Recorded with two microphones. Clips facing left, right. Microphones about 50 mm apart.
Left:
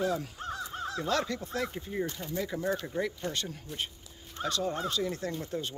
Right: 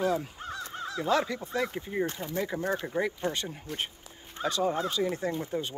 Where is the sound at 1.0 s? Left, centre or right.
Centre.